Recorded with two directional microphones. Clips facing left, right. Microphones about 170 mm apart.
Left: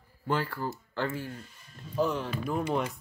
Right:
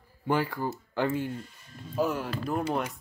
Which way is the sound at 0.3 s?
15° right (ahead or behind).